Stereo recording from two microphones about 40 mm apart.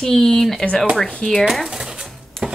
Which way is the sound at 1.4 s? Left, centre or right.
Centre.